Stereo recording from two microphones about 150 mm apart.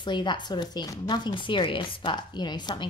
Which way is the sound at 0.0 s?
30° left (ahead or behind).